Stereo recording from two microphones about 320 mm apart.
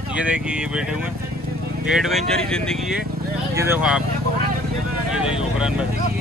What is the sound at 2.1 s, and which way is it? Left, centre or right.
Speech, centre.